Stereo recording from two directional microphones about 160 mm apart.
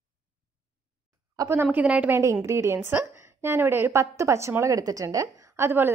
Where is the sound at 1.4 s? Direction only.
15° right (ahead or behind).